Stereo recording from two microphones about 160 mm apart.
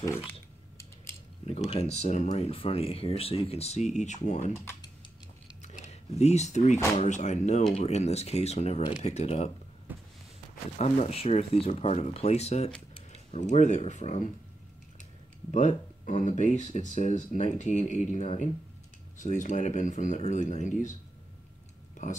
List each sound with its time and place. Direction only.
0.3 s a sound: 15° left (ahead or behind)
1.7 s speech: 40° left (ahead or behind)
4.6 s speech: 15° left (ahead or behind)
5.6 s a sound: 45° left (ahead or behind)
7.0 s speech: 45° left (ahead or behind)
9.9 s a sound: 10° right (ahead or behind)
10.8 s speech: 40° left (ahead or behind)
15.5 s speech: 50° left (ahead or behind)
22.0 s speech: 45° left (ahead or behind)